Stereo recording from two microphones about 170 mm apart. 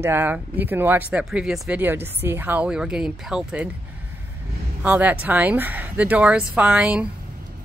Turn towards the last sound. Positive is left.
turn(degrees=-5)  # may be behind; listen again after turning